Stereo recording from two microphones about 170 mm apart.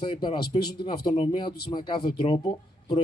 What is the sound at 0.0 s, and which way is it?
Speech, 30° left (ahead or behind).